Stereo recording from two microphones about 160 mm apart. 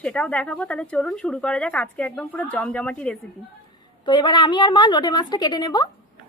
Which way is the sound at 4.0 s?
30° left (ahead or behind).